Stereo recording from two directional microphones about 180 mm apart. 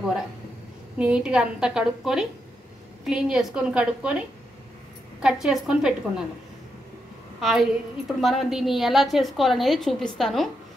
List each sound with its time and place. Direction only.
0.9 s a woman's voice: 5° right (ahead or behind)
5.2 s a woman's voice: 5° right (ahead or behind)
7.3 s a woman's voice: centre (ahead or behind)